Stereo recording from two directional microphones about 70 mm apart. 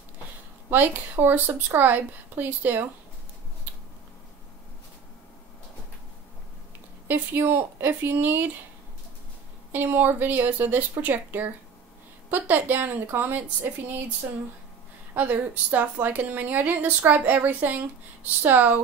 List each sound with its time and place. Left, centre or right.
0.7 s a woman's voice: right
7.1 s a woman's voice: right
9.7 s a woman's voice: right
15.1 s a woman's voice: right